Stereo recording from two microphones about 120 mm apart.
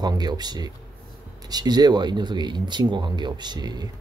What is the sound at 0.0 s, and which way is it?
Speech, 35° right (ahead or behind).